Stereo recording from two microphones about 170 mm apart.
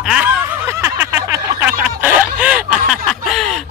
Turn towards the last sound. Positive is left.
turn(degrees=0)  # may be behind; listen again after turning